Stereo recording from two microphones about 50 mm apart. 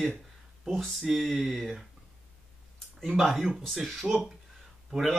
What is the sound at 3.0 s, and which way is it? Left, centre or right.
Speech, centre.